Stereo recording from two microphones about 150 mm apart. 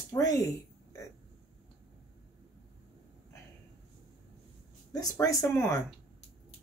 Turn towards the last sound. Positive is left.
turn(degrees=15)  # may be behind; listen again after turning